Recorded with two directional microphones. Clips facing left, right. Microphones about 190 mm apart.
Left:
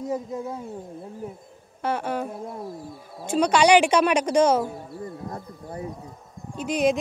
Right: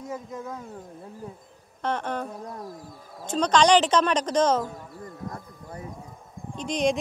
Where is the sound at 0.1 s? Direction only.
30° left (ahead or behind).